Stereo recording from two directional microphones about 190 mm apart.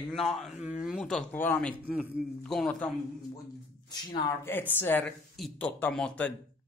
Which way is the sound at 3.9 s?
25° left (ahead or behind).